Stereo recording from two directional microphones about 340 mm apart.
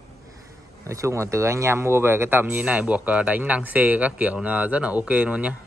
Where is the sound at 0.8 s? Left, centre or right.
Centre.